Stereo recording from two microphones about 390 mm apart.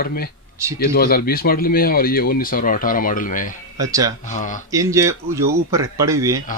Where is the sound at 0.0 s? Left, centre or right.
Left.